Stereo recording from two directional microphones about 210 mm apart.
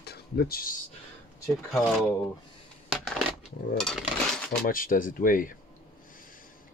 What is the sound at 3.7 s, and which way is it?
Dishes, centre (ahead or behind).